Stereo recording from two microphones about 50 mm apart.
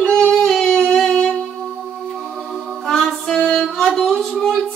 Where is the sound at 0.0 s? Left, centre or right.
Centre.